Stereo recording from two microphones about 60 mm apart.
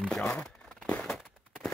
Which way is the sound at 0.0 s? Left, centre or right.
Centre.